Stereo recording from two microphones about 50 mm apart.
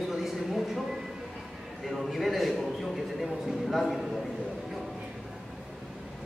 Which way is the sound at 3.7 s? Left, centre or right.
Centre.